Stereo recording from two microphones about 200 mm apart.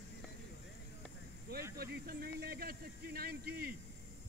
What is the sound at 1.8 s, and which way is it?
Speech, 50° right (ahead or behind).